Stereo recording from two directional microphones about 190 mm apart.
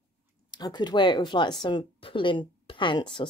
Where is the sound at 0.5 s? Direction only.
20° left (ahead or behind).